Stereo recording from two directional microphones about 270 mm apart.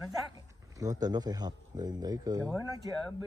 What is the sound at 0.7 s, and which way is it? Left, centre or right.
Speech, centre.